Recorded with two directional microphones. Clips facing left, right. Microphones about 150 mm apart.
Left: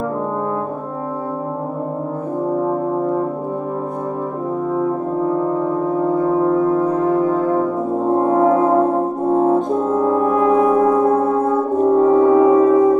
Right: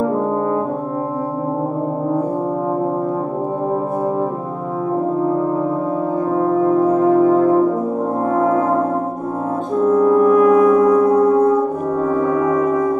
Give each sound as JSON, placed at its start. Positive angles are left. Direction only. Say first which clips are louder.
{"t": 8.3, "sound": "french horn", "louder": "left 2 dB", "side_deg": 25}
{"t": 9.3, "sound": "brass instrument", "louder": "left 7 dB", "side_deg": 25}